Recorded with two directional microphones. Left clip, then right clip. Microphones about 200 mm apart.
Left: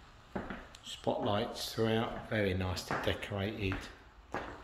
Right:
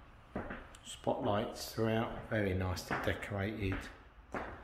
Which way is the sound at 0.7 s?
Centre (ahead or behind).